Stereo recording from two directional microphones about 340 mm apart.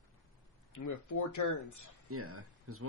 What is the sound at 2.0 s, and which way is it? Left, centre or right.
Speech, right.